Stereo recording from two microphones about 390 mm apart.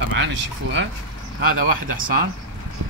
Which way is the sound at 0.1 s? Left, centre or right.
Right.